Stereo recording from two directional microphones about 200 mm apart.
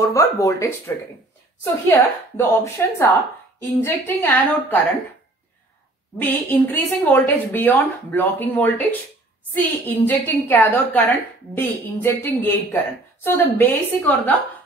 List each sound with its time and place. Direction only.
0.0 s a woman's voice: 15° left (ahead or behind)
6.1 s a woman's voice: 10° left (ahead or behind)